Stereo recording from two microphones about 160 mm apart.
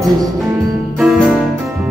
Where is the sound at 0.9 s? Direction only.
Centre (ahead or behind).